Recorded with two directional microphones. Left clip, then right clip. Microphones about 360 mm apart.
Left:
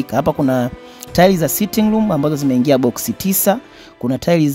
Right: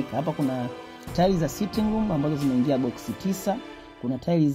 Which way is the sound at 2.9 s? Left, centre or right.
Left.